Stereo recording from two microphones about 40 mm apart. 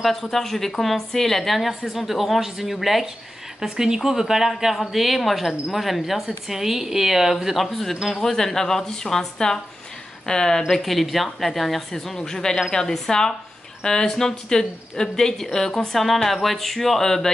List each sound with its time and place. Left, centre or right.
0.0 s a woman's voice: centre
7.6 s a woman's voice: centre
10.7 s a woman's voice: centre
12.2 s a woman's voice: centre